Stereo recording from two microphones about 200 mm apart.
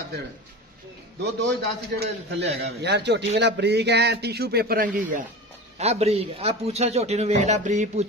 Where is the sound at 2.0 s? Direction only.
55° right (ahead or behind).